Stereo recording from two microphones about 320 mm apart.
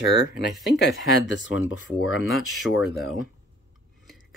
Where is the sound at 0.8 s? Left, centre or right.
Left.